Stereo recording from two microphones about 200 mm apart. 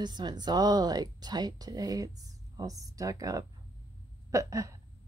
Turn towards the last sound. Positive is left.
turn(degrees=-15)  # may be behind; listen again after turning